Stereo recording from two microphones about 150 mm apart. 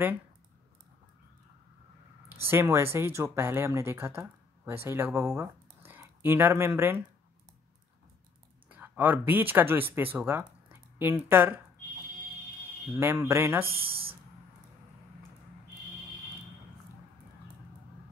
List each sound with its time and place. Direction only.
2.2 s speech: 15° right (ahead or behind)
8.6 s speech: 10° right (ahead or behind)
12.9 s speech: 15° right (ahead or behind)
13.7 s speech: 40° right (ahead or behind)